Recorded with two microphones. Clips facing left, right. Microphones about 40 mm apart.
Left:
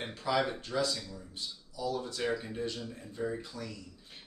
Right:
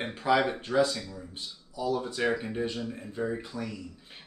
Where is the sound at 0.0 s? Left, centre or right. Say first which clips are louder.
Right 6 dB; right.